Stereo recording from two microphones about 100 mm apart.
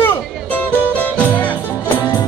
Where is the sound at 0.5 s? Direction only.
15° left (ahead or behind).